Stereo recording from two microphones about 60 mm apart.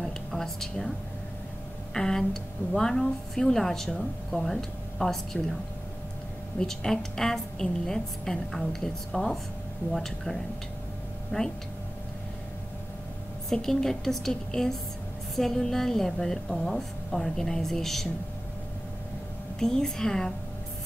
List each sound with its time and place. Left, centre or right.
0.0 s a sound: centre
2.0 s a woman's voice: centre
6.6 s a woman's voice: centre
11.3 s speech: left
13.5 s a woman's voice: centre
19.6 s a woman's voice: centre